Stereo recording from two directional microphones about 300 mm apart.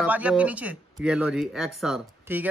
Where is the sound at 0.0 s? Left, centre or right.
Centre.